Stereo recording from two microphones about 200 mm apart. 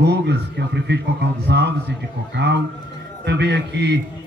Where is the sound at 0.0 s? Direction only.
55° right (ahead or behind).